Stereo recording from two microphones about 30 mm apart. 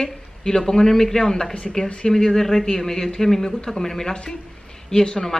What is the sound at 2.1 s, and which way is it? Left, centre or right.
A man's voice, centre.